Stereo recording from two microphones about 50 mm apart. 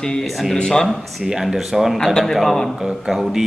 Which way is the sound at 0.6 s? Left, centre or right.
Centre.